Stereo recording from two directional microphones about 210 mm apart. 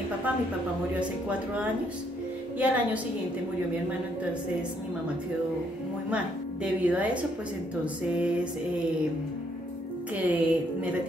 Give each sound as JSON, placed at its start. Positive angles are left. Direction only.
{"t": 2.6, "sound": "a woman's voice", "side_deg": -5}
{"t": 6.0, "sound": "a woman's voice", "side_deg": -5}
{"t": 10.2, "sound": "a woman's voice", "side_deg": -5}